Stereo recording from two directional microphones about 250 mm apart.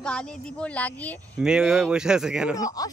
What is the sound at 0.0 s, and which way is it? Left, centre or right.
Speech, centre.